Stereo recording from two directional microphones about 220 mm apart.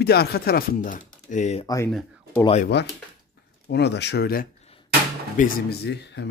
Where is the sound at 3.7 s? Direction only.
50° left (ahead or behind).